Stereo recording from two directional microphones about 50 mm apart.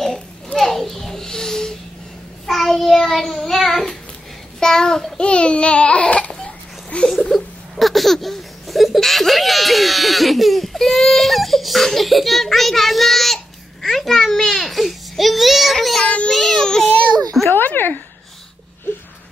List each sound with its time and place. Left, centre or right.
0.6 s a sound: centre
2.4 s child singing: centre
4.6 s a child's voice: centre
6.9 s a sound: left
7.2 s laughter: centre
13.8 s a child's voice: centre
16.0 s child singing: left
16.3 s child singing: centre
16.6 s baby cry: centre
17.6 s a sound: left